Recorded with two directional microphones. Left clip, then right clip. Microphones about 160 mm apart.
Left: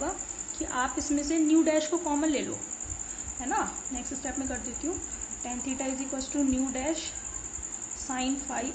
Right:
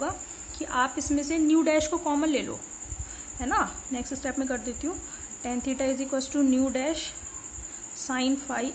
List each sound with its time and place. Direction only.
0.6 s a woman's voice: 25° right (ahead or behind)
3.3 s a woman's voice: 40° right (ahead or behind)
8.1 s a woman's voice: 40° right (ahead or behind)